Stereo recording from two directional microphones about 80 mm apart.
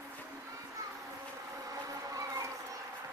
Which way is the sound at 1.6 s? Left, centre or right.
Right.